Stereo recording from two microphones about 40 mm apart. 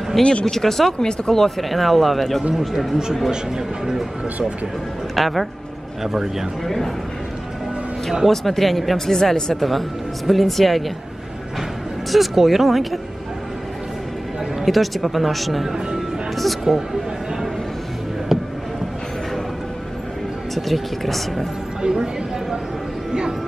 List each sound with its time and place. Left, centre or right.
0.2 s speech: left
0.5 s speech: centre
0.9 s speech: centre
3.3 s speech: centre
5.1 s speech: centre
6.1 s speech: centre
6.6 s speech: centre
8.3 s speech: centre
12.1 s speech: centre
14.6 s speech: centre
18.3 s a sound: centre
20.5 s speech: centre
21.8 s speech: centre